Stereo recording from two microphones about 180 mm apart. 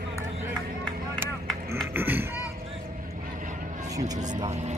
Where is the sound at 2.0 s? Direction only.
10° right (ahead or behind).